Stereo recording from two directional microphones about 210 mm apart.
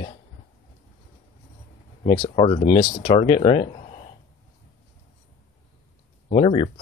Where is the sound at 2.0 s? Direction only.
30° left (ahead or behind).